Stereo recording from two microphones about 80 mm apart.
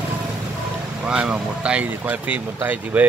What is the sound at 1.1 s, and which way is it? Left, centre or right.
Speech, centre.